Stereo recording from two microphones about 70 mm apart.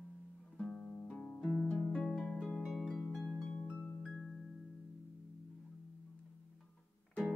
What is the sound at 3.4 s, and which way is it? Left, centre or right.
Music, centre.